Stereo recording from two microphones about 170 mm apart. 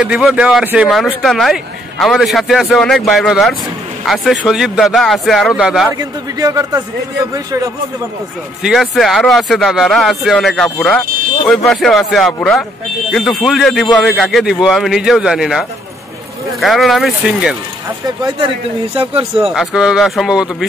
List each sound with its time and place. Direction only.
0.0 s speech: 5° right (ahead or behind)
5.9 s a man's voice: 20° right (ahead or behind)
8.6 s speech: centre (ahead or behind)
18.0 s a man's voice: 25° right (ahead or behind)
19.5 s speech: 5° right (ahead or behind)